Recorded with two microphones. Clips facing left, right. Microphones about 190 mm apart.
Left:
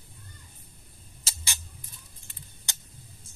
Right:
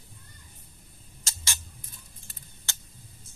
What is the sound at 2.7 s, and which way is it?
Tick, 15° left (ahead or behind).